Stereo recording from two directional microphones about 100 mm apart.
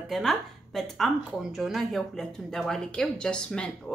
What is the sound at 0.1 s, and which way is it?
Speech, centre (ahead or behind).